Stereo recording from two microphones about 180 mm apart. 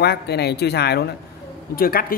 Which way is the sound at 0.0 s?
65° left (ahead or behind).